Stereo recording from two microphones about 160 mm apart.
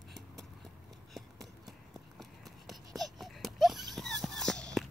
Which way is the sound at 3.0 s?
Centre (ahead or behind).